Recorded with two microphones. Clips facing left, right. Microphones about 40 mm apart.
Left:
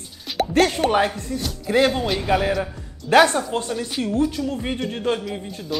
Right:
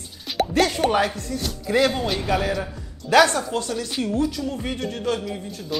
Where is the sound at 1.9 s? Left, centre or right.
Centre.